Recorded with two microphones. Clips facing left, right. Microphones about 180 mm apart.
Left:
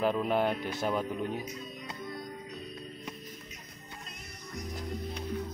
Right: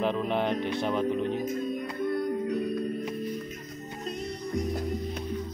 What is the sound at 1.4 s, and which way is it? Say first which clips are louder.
Music: right 11 dB; 50° right (ahead or behind).